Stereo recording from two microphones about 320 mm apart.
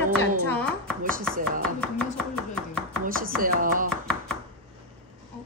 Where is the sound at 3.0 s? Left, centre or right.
Right.